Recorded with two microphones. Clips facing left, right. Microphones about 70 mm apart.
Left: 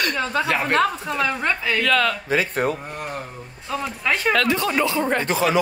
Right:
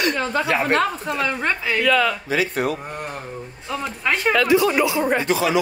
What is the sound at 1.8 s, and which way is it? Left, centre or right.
Speech, centre.